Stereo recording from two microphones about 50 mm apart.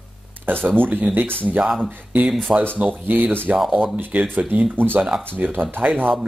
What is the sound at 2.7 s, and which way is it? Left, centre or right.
Speech, right.